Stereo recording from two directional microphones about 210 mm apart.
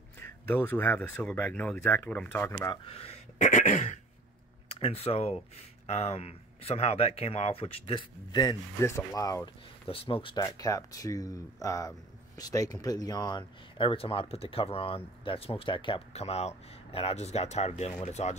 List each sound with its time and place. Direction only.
0.2 s speech: 10° left (ahead or behind)
2.9 s throat clearing: 30° left (ahead or behind)
4.7 s speech: 30° left (ahead or behind)
9.8 s speech: 25° left (ahead or behind)